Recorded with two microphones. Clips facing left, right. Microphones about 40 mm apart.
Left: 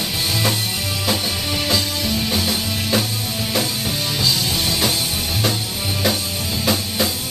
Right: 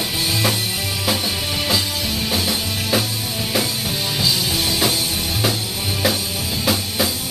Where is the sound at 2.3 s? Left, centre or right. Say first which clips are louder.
Even; centre.